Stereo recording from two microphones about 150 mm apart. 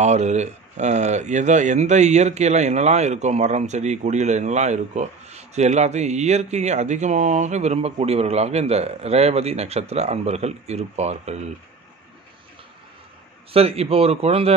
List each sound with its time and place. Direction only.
0.0 s speech: 50° right (ahead or behind)
13.5 s a man's voice: 40° right (ahead or behind)